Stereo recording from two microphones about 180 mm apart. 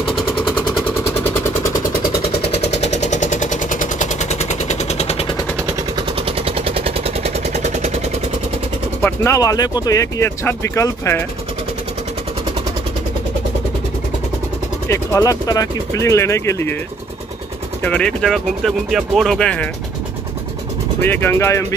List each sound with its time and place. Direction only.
0.5 s vehicle: 10° left (ahead or behind)
2.8 s vehicle: 40° left (ahead or behind)
6.2 s vehicle: 30° right (ahead or behind)
9.0 s speech: 15° left (ahead or behind)
14.9 s speech: 20° left (ahead or behind)
17.8 s speech: 5° left (ahead or behind)
21.0 s speech: 10° left (ahead or behind)